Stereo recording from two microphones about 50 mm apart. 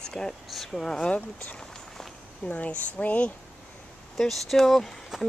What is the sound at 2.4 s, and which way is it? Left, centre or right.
Speech, left.